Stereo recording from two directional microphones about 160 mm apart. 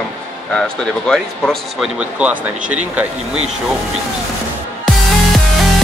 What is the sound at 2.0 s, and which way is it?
Speech, 10° right (ahead or behind).